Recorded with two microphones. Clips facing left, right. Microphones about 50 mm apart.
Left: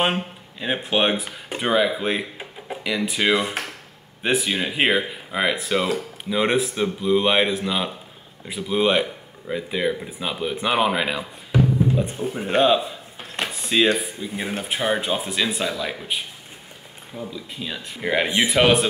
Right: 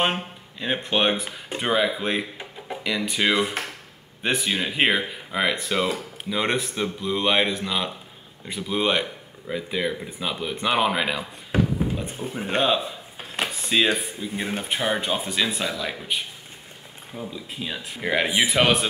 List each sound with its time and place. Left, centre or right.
0.0 s speech: centre
17.3 s speech: centre